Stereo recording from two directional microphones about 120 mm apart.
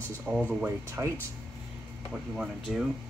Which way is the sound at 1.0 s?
20° right (ahead or behind).